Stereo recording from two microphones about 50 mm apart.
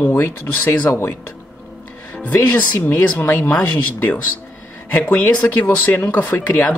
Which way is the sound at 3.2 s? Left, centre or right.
Left.